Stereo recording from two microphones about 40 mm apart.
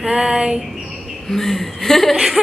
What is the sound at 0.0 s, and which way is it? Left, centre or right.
Speech, centre.